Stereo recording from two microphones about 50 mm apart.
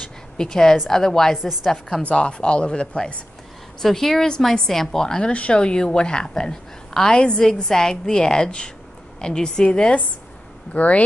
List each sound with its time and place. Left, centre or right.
0.4 s a woman's voice: centre
1.3 s a woman's voice: centre
1.7 s a woman's voice: centre
2.0 s speech: left
3.8 s a woman's voice: centre; by 11.0 s left